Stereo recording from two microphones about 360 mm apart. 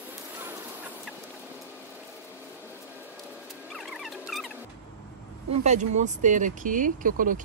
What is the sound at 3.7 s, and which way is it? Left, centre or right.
Rodents, centre.